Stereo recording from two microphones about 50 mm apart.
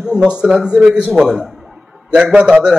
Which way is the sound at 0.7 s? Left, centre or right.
Centre.